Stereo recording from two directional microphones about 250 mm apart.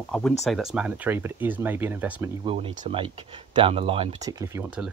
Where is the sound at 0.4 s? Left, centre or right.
Centre.